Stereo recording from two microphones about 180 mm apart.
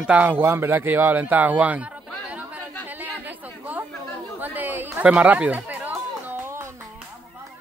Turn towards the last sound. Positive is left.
turn(degrees=-10)  # may be behind; listen again after turning